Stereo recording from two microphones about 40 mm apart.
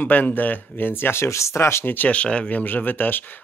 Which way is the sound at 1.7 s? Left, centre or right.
Left.